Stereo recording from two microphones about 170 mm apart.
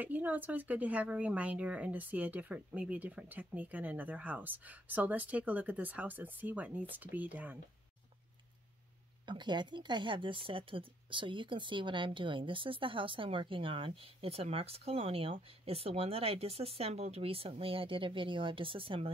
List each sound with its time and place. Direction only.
0.0 s speech: 10° right (ahead or behind)
9.2 s speech: 25° right (ahead or behind)